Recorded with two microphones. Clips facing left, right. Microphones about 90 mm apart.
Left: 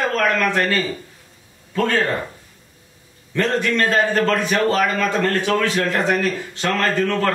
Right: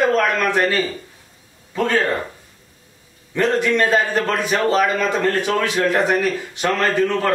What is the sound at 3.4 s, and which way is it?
A man's voice, 10° right (ahead or behind).